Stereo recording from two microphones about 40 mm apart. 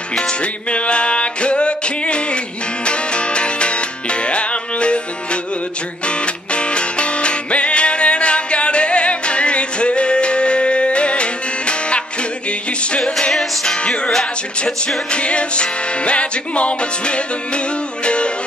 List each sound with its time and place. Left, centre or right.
0.3 s music: left
13.3 s music: centre
13.7 s music: left